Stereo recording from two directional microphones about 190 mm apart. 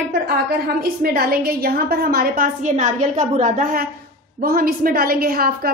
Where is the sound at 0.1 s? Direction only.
55° right (ahead or behind).